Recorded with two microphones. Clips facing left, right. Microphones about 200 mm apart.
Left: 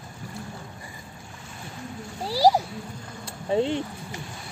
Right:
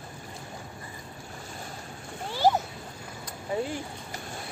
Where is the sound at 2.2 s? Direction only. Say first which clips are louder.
Left 4 dB; 35° left (ahead or behind).